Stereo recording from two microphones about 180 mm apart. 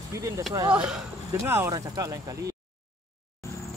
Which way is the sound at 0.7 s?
5° right (ahead or behind).